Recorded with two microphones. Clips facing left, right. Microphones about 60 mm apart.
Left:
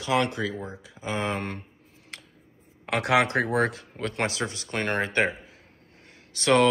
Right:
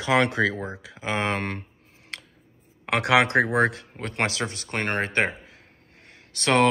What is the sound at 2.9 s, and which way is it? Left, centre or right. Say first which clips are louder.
Speech: right 2 dB; right.